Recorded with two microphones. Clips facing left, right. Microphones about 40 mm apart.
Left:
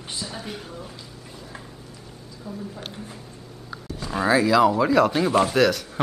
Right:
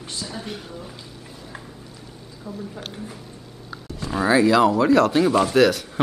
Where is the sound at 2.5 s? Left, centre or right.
Right.